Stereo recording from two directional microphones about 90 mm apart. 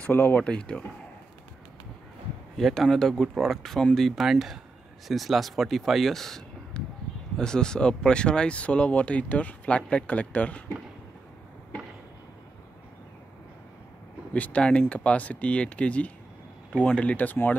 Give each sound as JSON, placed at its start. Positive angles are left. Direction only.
{"t": 0.0, "sound": "speech", "side_deg": 25}
{"t": 0.4, "sound": "speech", "side_deg": 10}
{"t": 2.5, "sound": "speech", "side_deg": 5}
{"t": 14.3, "sound": "speech", "side_deg": 15}